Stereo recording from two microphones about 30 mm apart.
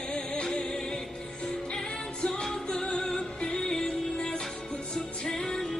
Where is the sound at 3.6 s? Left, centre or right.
Centre.